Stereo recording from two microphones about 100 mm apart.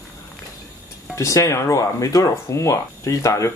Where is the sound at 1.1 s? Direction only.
30° left (ahead or behind).